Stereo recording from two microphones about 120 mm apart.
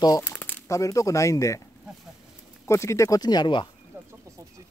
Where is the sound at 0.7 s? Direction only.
25° left (ahead or behind).